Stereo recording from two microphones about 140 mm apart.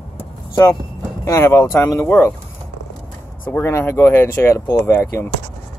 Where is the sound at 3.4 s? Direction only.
15° left (ahead or behind).